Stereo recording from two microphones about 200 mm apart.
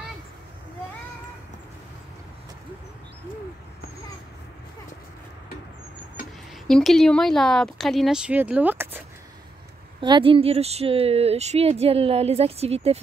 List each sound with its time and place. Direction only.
6.7 s speech: centre (ahead or behind)
9.9 s speech: 25° right (ahead or behind)